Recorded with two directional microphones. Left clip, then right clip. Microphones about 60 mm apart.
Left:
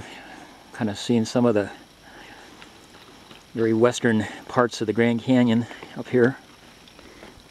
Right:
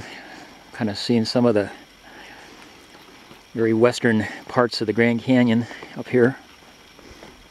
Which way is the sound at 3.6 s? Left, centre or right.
Centre.